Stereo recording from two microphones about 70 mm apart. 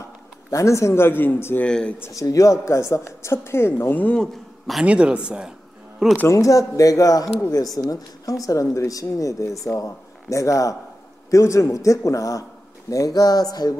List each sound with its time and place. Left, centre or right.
0.5 s speech: left
1.6 s speech: centre
2.1 s a man's voice: left
4.2 s speech: centre
4.8 s speech: centre
6.2 s a man's voice: left
7.5 s speech: left
8.5 s a man's voice: left